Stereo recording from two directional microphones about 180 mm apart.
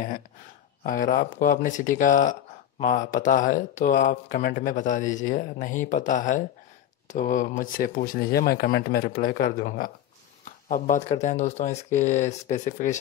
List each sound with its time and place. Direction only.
0.8 s speech: 50° left (ahead or behind)